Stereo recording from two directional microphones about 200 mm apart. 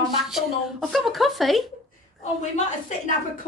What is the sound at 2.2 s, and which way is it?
Speech, 35° left (ahead or behind).